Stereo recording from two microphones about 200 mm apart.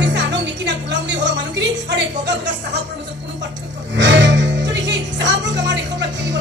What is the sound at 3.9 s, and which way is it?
Music, 60° right (ahead or behind).